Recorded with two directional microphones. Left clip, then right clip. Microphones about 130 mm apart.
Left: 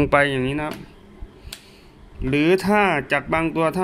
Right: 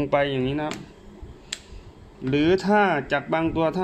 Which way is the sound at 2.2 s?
20° left (ahead or behind).